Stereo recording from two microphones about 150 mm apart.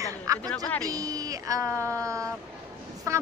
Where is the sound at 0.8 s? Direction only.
25° right (ahead or behind).